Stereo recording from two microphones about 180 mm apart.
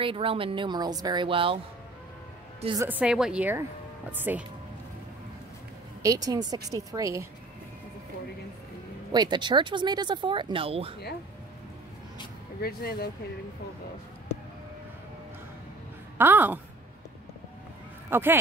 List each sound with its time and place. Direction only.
0.0 s speech: 30° right (ahead or behind)
2.8 s a woman's voice: 10° right (ahead or behind)
6.0 s speech: 20° right (ahead or behind)
9.1 s speech: 25° right (ahead or behind)
12.6 s speech: 60° left (ahead or behind)
16.2 s a woman's voice: 10° right (ahead or behind)
18.1 s a woman's voice: 10° right (ahead or behind)